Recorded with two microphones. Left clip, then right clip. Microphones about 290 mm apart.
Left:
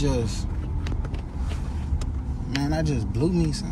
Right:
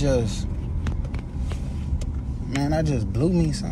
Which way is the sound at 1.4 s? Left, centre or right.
Centre.